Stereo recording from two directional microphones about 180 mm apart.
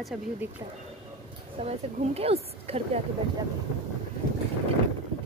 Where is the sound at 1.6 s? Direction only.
35° right (ahead or behind).